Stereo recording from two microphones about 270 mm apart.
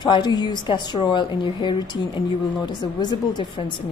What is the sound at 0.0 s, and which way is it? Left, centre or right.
A woman's voice, centre.